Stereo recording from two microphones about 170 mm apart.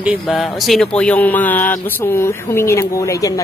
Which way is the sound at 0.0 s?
5° right (ahead or behind).